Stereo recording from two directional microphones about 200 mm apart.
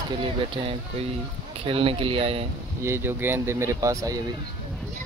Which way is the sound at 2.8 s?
10° right (ahead or behind).